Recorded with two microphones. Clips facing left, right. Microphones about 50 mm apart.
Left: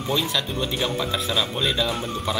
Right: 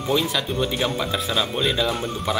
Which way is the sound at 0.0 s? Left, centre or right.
Centre.